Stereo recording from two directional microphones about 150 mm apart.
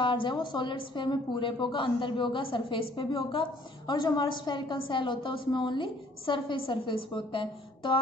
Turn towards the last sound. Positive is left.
turn(degrees=35)  # may be behind; listen again after turning